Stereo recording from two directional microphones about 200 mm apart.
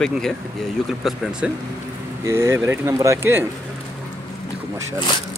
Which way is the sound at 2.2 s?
15° right (ahead or behind).